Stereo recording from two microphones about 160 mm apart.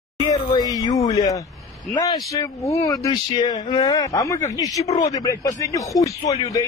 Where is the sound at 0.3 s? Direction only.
20° left (ahead or behind).